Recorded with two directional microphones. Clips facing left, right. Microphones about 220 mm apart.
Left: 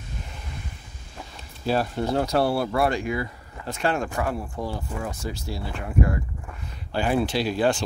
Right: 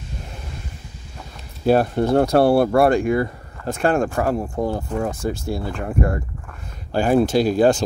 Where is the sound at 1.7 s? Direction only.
50° right (ahead or behind).